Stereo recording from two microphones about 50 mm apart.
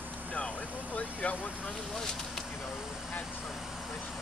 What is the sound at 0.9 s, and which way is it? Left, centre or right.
Vehicle, left.